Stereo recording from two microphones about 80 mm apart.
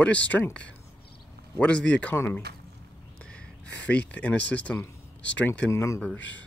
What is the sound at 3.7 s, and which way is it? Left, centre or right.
Speech, centre.